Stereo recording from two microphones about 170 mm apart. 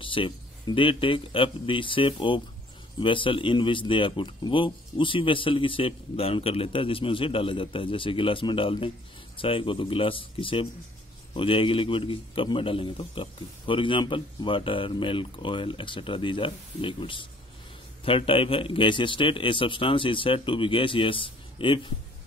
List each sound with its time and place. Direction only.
0.0 s speech: 30° left (ahead or behind)